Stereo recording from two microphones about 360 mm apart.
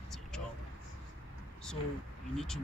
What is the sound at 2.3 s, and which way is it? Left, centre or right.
Speech, centre.